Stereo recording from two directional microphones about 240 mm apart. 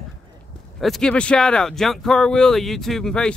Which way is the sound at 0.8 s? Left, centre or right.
Centre.